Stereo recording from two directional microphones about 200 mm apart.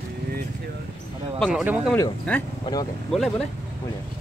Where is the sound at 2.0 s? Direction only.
10° left (ahead or behind).